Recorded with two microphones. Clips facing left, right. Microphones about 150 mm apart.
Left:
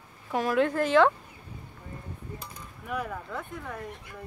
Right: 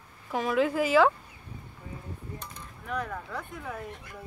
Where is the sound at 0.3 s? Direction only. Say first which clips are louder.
Left 1 dB; centre (ahead or behind).